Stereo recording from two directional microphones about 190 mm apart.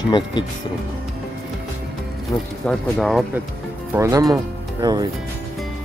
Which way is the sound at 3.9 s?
15° right (ahead or behind).